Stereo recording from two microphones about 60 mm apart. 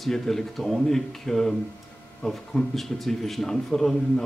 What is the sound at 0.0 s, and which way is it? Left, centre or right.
Speech, centre.